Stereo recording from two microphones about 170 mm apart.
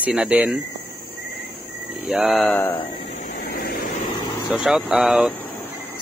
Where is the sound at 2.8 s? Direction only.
45° left (ahead or behind).